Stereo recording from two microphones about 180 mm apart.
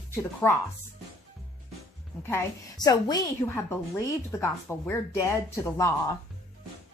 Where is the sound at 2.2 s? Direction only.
15° left (ahead or behind).